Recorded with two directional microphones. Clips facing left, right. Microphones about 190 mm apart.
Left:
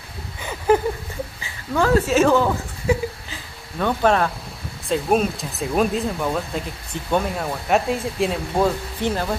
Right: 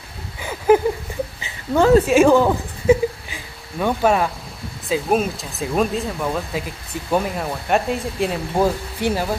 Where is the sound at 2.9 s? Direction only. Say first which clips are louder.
Right 6 dB; 20° right (ahead or behind).